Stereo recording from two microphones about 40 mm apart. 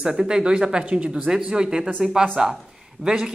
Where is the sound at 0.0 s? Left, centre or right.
Centre.